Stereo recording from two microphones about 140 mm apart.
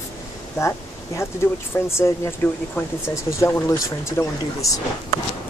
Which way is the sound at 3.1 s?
20° left (ahead or behind).